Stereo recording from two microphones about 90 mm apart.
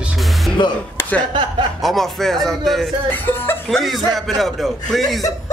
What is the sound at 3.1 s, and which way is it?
Speech, 25° left (ahead or behind).